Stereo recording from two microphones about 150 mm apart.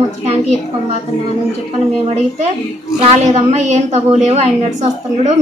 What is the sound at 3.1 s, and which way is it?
A woman's voice, 50° right (ahead or behind).